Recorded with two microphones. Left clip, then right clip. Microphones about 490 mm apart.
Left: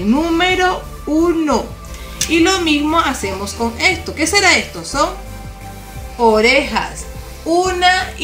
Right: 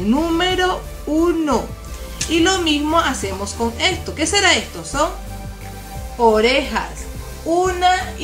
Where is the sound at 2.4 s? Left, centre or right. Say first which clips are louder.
Left 2 dB; right.